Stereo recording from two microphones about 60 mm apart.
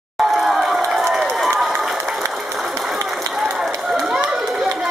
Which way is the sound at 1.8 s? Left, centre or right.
Centre.